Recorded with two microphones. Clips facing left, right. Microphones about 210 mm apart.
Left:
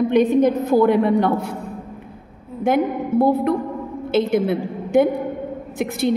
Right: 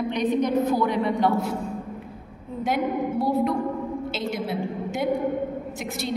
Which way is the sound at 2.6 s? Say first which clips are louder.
Left 5 dB; 55° left (ahead or behind).